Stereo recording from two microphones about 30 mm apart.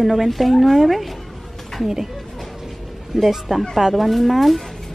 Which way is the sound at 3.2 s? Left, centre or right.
Centre.